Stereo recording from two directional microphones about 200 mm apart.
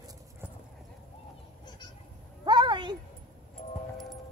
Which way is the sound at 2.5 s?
20° right (ahead or behind).